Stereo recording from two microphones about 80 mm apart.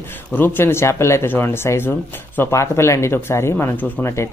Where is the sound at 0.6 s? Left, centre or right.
Left.